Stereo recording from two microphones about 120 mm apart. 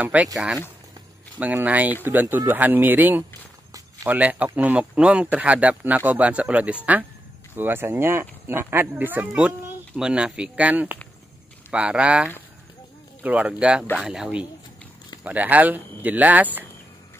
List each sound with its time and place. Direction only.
0.0 s speech: 15° right (ahead or behind)